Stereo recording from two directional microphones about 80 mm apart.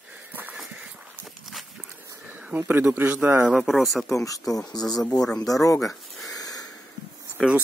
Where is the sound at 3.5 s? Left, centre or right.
Centre.